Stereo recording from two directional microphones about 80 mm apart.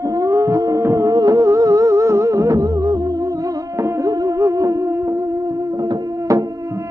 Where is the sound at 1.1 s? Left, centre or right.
Right.